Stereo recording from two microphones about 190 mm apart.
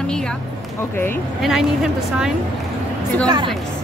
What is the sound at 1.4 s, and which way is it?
Speech, centre (ahead or behind).